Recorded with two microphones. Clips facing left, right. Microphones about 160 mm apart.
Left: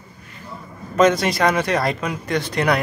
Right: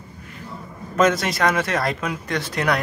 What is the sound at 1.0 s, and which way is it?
Speech, centre (ahead or behind).